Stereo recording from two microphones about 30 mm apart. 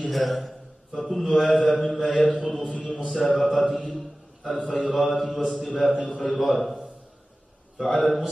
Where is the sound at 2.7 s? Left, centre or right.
Left.